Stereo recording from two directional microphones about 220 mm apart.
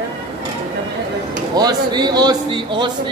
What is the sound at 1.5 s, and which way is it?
A man's voice, 20° right (ahead or behind).